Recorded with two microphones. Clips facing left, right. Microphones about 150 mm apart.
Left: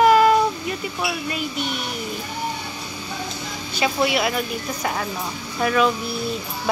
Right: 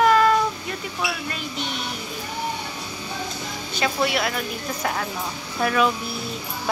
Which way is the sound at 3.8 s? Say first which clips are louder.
Left 2 dB; 5° left (ahead or behind).